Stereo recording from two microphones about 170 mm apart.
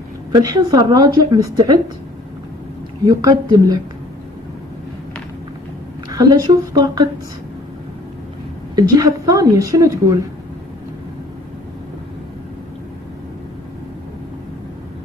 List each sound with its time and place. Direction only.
0.3 s a woman's voice: 20° right (ahead or behind)
3.1 s a woman's voice: 20° right (ahead or behind)
6.0 s a woman's voice: 20° right (ahead or behind)
8.7 s a woman's voice: 20° right (ahead or behind)